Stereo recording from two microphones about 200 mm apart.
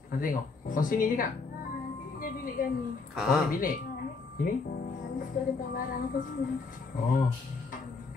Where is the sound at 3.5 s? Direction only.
45° left (ahead or behind).